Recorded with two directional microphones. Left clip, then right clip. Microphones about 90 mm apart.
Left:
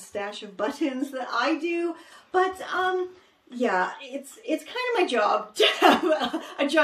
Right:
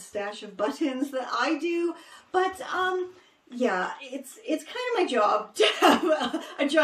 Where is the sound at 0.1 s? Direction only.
10° right (ahead or behind).